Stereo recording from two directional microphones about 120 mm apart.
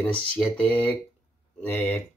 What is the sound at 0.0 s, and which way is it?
Speech, 10° left (ahead or behind).